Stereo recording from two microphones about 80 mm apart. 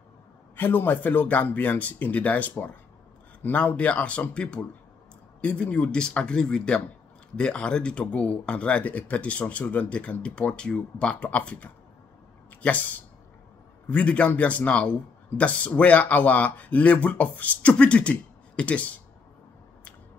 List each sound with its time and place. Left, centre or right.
0.6 s speech: left